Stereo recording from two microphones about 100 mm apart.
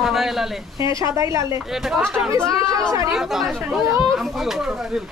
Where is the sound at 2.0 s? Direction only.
5° left (ahead or behind).